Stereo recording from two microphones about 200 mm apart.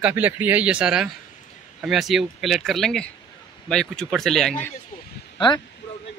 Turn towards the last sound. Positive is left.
turn(degrees=20)  # may be behind; listen again after turning